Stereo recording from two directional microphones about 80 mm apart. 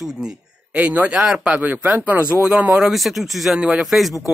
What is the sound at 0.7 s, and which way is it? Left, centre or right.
Speech, centre.